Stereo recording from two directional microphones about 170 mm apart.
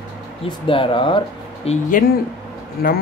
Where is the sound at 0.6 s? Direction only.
30° left (ahead or behind).